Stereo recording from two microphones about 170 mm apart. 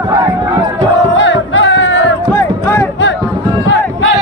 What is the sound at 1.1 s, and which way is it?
Music, 90° left.